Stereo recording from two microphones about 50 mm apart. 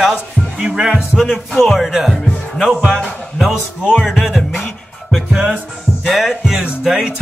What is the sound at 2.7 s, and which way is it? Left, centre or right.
Speech, right.